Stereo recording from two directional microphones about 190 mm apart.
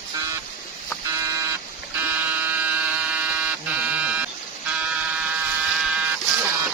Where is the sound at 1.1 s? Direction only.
15° right (ahead or behind).